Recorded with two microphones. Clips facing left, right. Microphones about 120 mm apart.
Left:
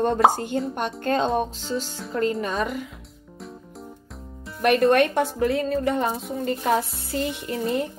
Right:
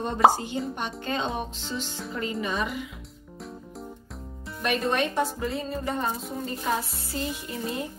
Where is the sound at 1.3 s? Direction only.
40° left (ahead or behind).